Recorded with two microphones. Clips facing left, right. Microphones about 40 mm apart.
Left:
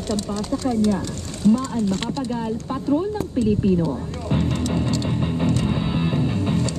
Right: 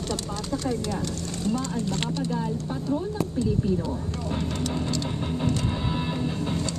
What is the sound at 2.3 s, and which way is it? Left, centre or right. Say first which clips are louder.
Speech: left 3 dB; left.